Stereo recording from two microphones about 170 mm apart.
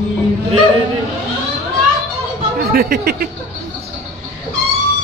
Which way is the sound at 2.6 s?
65° right (ahead or behind).